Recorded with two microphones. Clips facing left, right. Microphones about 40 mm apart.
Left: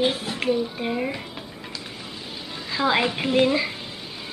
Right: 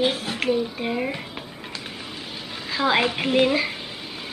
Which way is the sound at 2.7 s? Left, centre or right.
Centre.